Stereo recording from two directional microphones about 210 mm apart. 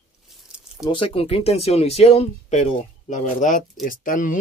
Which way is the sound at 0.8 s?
25° left (ahead or behind).